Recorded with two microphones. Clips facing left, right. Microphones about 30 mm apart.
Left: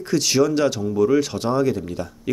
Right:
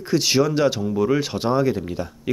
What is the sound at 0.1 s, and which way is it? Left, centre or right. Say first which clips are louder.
Speech: even; centre.